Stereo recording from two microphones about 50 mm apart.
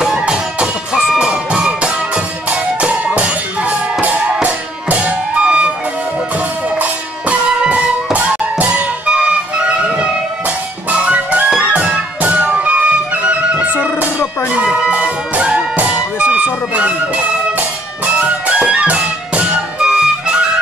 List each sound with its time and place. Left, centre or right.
0.2 s music: centre
7.6 s music: right